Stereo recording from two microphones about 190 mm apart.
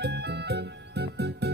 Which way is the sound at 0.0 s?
60° right (ahead or behind).